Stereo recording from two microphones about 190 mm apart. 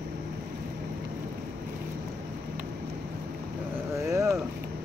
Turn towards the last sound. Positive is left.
turn(degrees=-15)  # may be behind; listen again after turning